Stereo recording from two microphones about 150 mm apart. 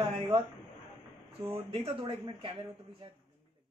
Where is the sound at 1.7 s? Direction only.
40° right (ahead or behind).